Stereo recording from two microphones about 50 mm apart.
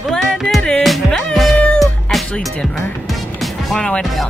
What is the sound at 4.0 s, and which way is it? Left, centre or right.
Music, centre.